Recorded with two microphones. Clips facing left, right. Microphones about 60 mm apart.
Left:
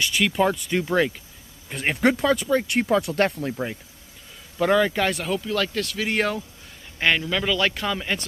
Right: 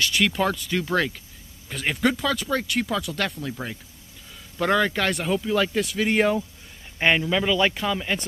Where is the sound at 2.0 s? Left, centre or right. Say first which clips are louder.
Left 3 dB; left.